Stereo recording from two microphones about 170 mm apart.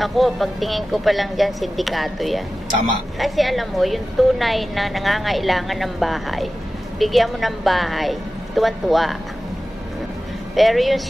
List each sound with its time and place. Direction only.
0.0 s a woman's voice: centre (ahead or behind)
10.5 s a woman's voice: centre (ahead or behind)